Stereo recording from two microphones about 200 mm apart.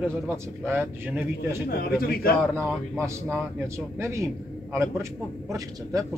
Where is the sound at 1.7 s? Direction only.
50° left (ahead or behind).